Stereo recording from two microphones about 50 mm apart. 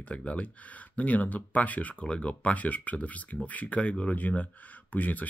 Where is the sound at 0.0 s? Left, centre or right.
Left.